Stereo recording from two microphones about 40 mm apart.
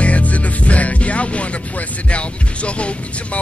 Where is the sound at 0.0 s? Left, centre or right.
Left.